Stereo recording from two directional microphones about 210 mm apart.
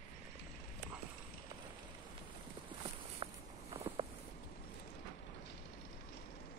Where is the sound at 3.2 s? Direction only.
25° right (ahead or behind).